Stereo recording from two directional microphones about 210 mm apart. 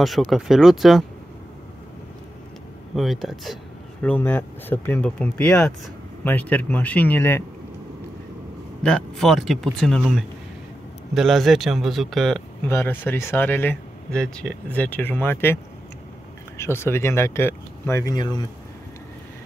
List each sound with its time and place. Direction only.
0.0 s speech: centre (ahead or behind)
3.0 s speech: centre (ahead or behind)
8.8 s speech: 5° left (ahead or behind); by 18.5 s 20° left (ahead or behind)